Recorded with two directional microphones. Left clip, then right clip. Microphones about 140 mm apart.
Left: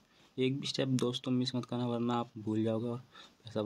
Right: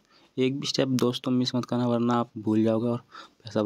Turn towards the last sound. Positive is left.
turn(degrees=-45)  # may be behind; listen again after turning